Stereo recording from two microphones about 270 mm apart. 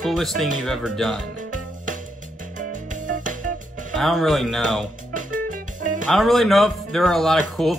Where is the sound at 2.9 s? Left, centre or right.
Right.